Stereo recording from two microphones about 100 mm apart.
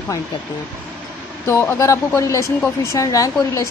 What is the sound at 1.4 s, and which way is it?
Speech, 30° left (ahead or behind).